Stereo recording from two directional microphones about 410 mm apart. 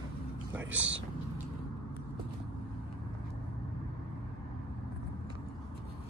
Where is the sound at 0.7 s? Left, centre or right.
Right.